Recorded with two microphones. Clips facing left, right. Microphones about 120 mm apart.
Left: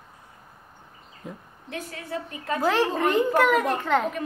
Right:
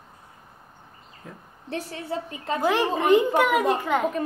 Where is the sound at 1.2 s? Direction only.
20° left (ahead or behind).